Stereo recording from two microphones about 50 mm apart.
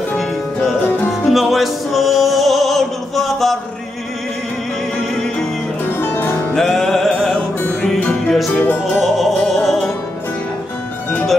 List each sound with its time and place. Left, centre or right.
1.3 s music: centre
5.9 s music: left
6.5 s music: centre
8.5 s music: left
9.0 s music: centre